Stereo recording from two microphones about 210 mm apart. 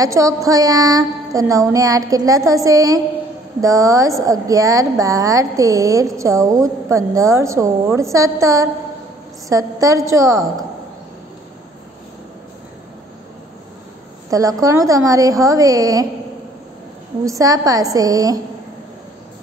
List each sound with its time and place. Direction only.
0.0 s a woman's voice: 15° right (ahead or behind)
14.3 s a woman's voice: 15° right (ahead or behind)
17.2 s a woman's voice: 15° right (ahead or behind)